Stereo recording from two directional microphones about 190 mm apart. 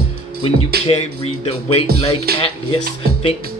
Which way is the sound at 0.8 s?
30° left (ahead or behind).